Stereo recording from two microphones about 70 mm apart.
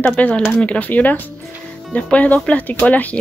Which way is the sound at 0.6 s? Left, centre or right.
Left.